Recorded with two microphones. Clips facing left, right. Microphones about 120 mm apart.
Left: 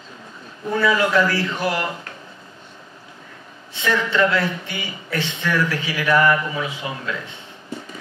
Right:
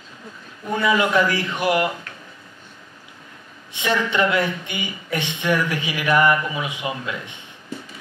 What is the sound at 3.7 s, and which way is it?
A man's voice, 15° right (ahead or behind).